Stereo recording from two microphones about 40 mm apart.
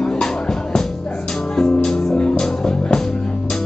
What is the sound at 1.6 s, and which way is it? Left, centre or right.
Music, centre.